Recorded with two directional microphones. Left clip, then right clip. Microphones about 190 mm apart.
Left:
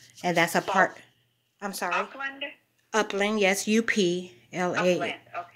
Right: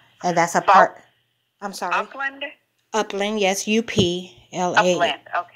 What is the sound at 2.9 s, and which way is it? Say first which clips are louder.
Speech: right 3 dB; 15° right (ahead or behind).